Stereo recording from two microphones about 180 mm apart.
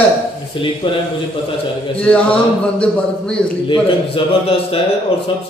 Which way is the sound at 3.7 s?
30° left (ahead or behind).